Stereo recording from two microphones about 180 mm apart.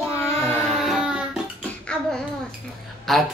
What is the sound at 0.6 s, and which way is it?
Music, centre (ahead or behind).